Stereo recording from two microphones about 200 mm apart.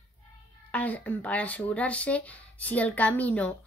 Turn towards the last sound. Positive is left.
turn(degrees=5)  # may be behind; listen again after turning